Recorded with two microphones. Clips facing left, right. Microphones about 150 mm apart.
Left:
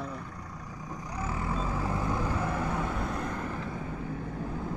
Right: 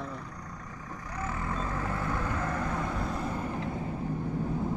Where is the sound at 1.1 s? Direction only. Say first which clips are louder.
Left 1 dB; 10° left (ahead or behind).